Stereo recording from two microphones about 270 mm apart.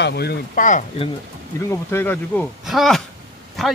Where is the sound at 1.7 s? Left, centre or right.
Centre.